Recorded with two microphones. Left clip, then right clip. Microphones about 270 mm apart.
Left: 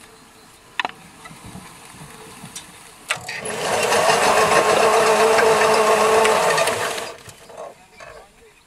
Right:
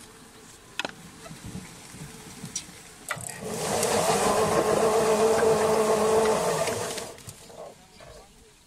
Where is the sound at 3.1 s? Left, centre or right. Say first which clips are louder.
Left 9 dB; left.